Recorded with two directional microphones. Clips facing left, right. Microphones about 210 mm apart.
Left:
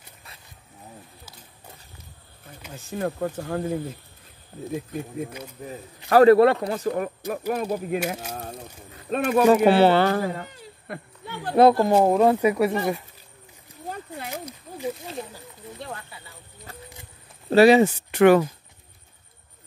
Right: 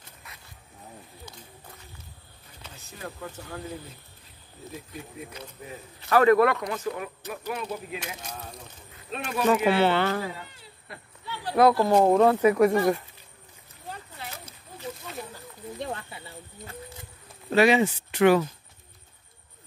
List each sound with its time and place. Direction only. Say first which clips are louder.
2.7 s speech: left 12 dB; 50° left (ahead or behind)
4.9 s speech: left 9 dB; 50° left (ahead or behind)
5.6 s a man's voice: left 5 dB; 35° left (ahead or behind)
9.1 s speech: left 9 dB; 50° left (ahead or behind)
9.5 s speech: left 4 dB; 35° left (ahead or behind); by 11.5 s 50° left (ahead or behind)
11.8 s speech: left 1 dB; 10° left (ahead or behind)
12.7 s speech: right 2 dB; 20° left (ahead or behind)
13.8 s a sound: left 6 dB; 50° left (ahead or behind)
14.3 s a sound: left 10 dB; 15° left (ahead or behind)
15.8 s a sound: right 3 dB; 25° right (ahead or behind)
17.5 s speech: left 6 dB; 35° left (ahead or behind); by 18.5 s 55° left (ahead or behind)